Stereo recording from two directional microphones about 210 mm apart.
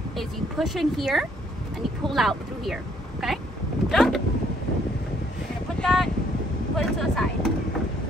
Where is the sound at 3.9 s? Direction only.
Centre (ahead or behind).